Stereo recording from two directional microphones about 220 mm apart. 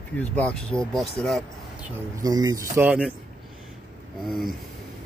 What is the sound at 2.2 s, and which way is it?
Speech, 15° right (ahead or behind).